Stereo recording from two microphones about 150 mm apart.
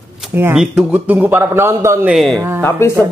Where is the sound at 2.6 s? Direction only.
15° left (ahead or behind).